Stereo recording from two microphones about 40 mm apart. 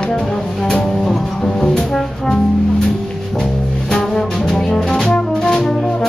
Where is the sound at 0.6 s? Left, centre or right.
Centre.